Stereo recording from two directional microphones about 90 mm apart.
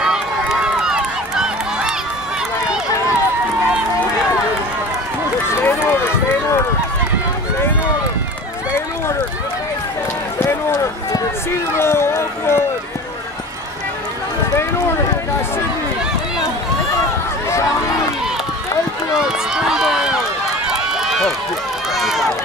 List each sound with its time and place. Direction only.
0.0 s run: 5° right (ahead or behind)
5.6 s run: 25° left (ahead or behind)
10.4 s run: 25° left (ahead or behind)
17.5 s a sound: 35° left (ahead or behind)
19.1 s run: 5° right (ahead or behind)